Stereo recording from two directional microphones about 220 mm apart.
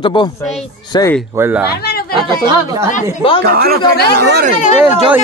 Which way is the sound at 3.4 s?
45° right (ahead or behind).